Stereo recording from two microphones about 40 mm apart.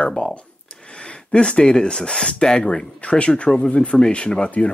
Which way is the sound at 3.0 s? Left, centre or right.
Left.